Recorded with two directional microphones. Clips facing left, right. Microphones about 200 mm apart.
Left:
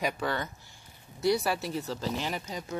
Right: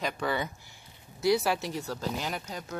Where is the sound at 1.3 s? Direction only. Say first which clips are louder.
Right 1 dB; centre (ahead or behind).